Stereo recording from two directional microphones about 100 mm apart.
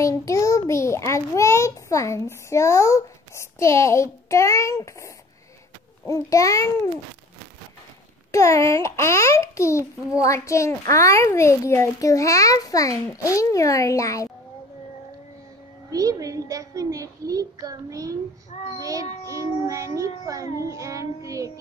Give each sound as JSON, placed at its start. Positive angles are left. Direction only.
{"t": 0.0, "sound": "a child's voice", "side_deg": 30}
{"t": 8.3, "sound": "a child's voice", "side_deg": 30}
{"t": 15.9, "sound": "a child's voice", "side_deg": -35}